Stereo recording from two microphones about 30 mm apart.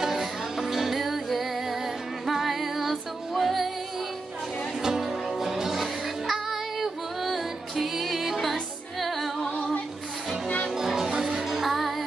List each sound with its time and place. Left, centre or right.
0.0 s music: centre
4.8 s music: centre
10.7 s music: centre
11.6 s music: centre